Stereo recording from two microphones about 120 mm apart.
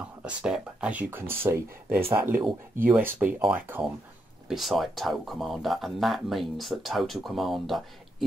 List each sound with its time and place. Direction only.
0.2 s speech: 5° right (ahead or behind)
4.5 s speech: centre (ahead or behind)